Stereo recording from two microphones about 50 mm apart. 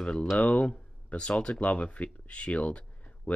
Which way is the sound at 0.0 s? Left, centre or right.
Left.